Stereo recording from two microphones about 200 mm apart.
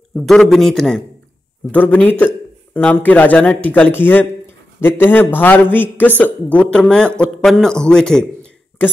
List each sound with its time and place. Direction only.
0.1 s a man's voice: centre (ahead or behind)